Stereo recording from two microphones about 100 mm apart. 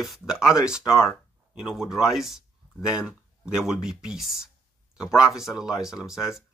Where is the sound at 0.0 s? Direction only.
5° right (ahead or behind).